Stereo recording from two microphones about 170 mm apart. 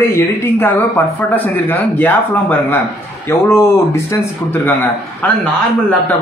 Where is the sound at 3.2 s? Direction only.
15° left (ahead or behind).